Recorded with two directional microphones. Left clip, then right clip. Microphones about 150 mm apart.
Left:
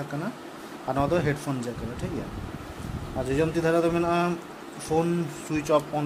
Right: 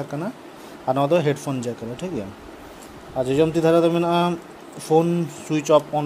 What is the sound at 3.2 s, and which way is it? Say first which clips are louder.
Speech: right 6 dB; 35° right (ahead or behind).